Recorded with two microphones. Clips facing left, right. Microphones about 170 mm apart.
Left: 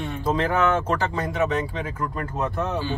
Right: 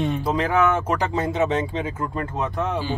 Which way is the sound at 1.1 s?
25° right (ahead or behind).